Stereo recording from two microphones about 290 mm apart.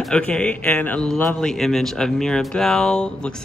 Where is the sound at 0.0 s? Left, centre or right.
Centre.